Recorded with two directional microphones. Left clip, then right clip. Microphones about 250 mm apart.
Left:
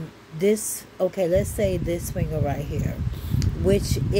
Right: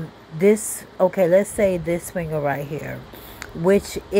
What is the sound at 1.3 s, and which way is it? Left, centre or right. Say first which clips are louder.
Speech: right 5 dB; centre.